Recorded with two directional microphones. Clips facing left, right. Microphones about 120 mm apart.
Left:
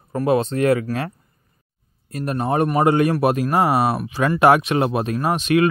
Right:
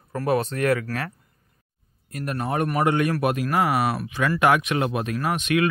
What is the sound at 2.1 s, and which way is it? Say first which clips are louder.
Speech: left 5 dB; 30° left (ahead or behind).